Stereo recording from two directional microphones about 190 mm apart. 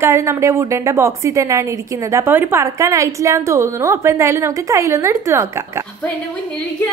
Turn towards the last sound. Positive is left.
turn(degrees=-15)  # may be behind; listen again after turning